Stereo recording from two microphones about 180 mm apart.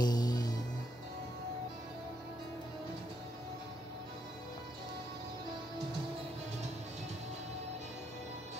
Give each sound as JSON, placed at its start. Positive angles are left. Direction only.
{"t": 0.0, "sound": "music", "side_deg": 20}